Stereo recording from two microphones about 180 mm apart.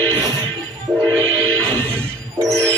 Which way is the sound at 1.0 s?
10° left (ahead or behind).